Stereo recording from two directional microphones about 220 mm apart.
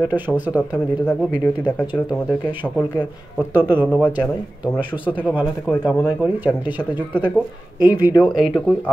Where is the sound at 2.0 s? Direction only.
5° left (ahead or behind).